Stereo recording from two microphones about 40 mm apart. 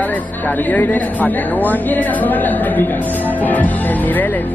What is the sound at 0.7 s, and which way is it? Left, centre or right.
Speech, left.